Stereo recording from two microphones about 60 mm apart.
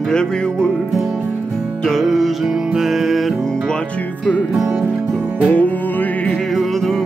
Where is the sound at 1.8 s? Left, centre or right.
Centre.